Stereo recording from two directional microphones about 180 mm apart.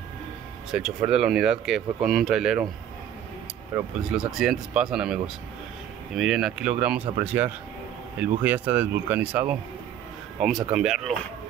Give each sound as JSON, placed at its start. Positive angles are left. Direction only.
{"t": 0.7, "sound": "speech", "side_deg": -5}
{"t": 4.1, "sound": "speech", "side_deg": -5}
{"t": 10.7, "sound": "speech", "side_deg": -5}